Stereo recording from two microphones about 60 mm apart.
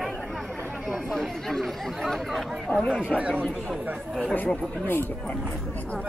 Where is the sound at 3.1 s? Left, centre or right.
Centre.